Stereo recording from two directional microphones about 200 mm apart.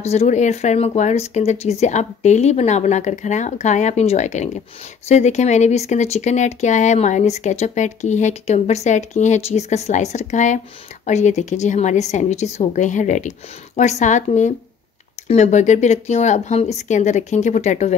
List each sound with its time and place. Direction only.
0.0 s speech: 35° left (ahead or behind)